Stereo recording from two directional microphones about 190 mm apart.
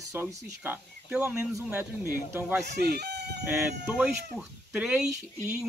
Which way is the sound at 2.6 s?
60° right (ahead or behind).